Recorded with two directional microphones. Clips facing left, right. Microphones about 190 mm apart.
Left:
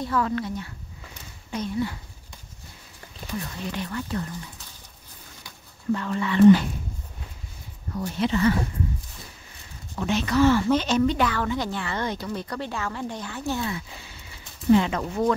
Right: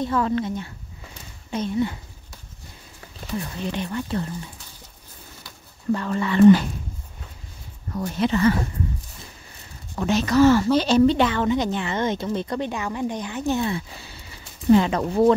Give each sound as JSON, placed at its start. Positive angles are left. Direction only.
{"t": 0.0, "sound": "a woman's voice", "side_deg": -25}
{"t": 3.7, "sound": "a woman's voice", "side_deg": -25}
{"t": 5.9, "sound": "speech", "side_deg": -40}
{"t": 8.0, "sound": "speech", "side_deg": -50}
{"t": 9.9, "sound": "a woman's voice", "side_deg": -40}
{"t": 14.8, "sound": "speech", "side_deg": -35}